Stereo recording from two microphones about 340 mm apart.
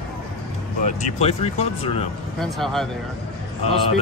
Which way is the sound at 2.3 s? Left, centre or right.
Centre.